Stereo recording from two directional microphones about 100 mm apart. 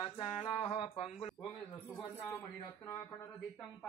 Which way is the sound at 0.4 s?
60° left (ahead or behind).